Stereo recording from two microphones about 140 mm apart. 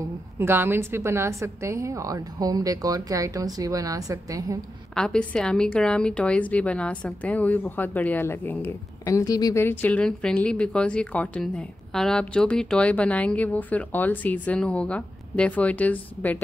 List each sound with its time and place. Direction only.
0.4 s a woman's voice: 15° right (ahead or behind)
4.9 s a woman's voice: 5° left (ahead or behind)